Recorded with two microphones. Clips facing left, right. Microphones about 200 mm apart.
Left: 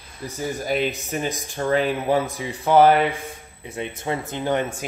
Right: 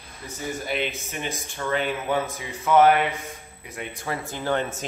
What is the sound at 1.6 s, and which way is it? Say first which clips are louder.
Speech: left 5 dB; 30° left (ahead or behind).